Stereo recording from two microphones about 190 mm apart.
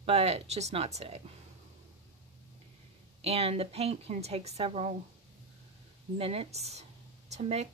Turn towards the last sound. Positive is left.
turn(degrees=-35)  # may be behind; listen again after turning